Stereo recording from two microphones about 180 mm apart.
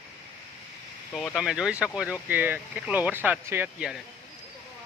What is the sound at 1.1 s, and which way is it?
Speech, 5° left (ahead or behind).